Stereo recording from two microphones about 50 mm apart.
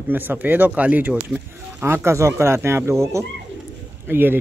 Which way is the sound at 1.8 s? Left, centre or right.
Right.